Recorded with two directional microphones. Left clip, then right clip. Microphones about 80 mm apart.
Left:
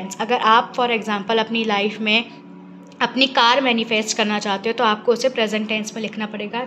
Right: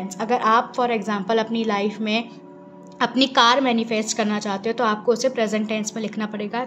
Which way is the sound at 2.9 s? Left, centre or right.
Right.